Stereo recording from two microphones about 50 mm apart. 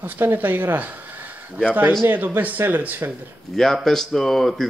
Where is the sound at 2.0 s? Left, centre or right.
Right.